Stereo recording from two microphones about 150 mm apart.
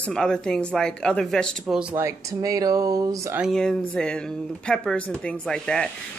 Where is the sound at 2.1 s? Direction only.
20° right (ahead or behind).